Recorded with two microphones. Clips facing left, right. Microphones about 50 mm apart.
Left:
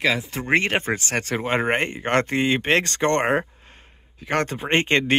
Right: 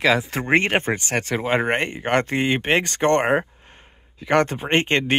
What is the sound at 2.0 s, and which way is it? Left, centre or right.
Speech, centre.